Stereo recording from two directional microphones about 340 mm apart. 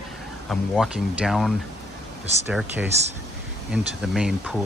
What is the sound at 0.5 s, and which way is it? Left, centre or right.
Speech, centre.